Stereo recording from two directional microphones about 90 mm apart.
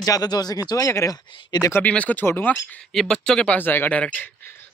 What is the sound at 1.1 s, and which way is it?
Speech, 50° left (ahead or behind).